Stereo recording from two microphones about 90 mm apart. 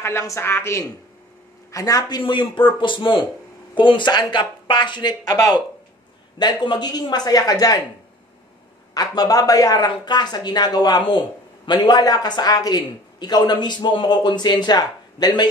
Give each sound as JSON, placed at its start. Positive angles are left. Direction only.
{"t": 0.2, "sound": "speech", "side_deg": 30}
{"t": 1.7, "sound": "speech", "side_deg": 40}
{"t": 8.9, "sound": "speech", "side_deg": 45}